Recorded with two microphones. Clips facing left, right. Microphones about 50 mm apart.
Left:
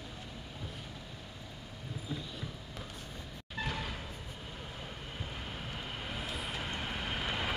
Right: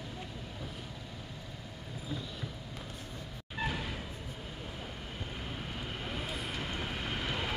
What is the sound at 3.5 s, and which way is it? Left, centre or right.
Vehicle, centre.